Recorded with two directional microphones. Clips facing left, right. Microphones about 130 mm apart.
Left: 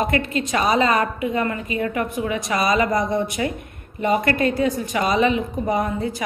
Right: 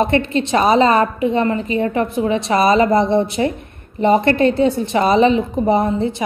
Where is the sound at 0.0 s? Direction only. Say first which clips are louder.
Right 5 dB; 25° right (ahead or behind).